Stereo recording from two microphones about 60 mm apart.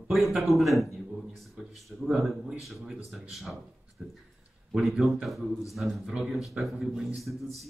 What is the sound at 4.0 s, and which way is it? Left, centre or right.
Speech, right.